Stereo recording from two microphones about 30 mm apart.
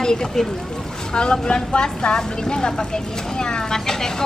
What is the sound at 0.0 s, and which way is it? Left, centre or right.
A woman's voice, left.